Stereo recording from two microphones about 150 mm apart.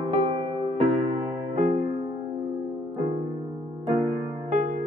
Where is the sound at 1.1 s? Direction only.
50° right (ahead or behind).